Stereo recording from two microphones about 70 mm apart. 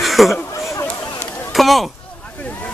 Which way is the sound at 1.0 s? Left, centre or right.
Left.